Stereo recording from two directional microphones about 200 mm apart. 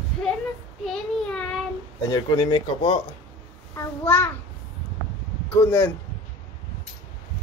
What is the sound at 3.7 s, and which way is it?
Speech, 10° left (ahead or behind).